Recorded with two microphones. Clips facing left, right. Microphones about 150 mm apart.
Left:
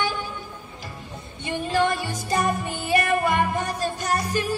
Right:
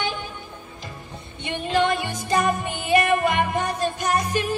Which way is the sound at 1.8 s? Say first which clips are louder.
Right 1 dB; 55° right (ahead or behind).